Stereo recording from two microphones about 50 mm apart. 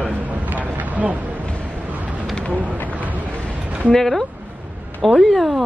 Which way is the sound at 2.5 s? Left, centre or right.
Right.